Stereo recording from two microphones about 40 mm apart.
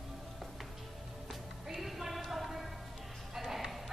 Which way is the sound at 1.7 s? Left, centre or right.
Centre.